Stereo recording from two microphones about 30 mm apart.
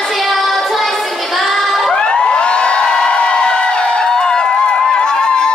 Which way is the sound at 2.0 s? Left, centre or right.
Left.